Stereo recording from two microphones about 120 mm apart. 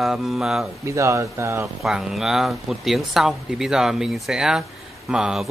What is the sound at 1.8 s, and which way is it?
Speech, 5° right (ahead or behind).